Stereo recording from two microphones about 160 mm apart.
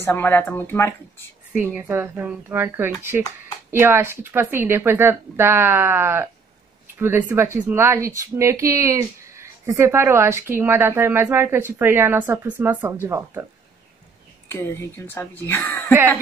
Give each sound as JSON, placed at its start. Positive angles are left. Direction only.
{"t": 0.0, "sound": "speech", "side_deg": 15}
{"t": 1.5, "sound": "speech", "side_deg": -10}
{"t": 14.5, "sound": "speech", "side_deg": 15}